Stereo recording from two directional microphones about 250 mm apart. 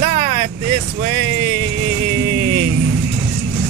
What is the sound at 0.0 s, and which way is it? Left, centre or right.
Vehicle, right.